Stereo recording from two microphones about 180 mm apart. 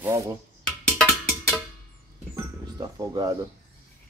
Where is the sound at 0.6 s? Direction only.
5° left (ahead or behind).